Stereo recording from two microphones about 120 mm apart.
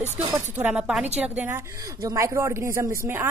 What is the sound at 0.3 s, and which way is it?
Speech, 15° right (ahead or behind).